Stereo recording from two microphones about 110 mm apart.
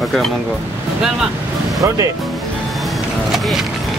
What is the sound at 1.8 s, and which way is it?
Speech, 30° right (ahead or behind).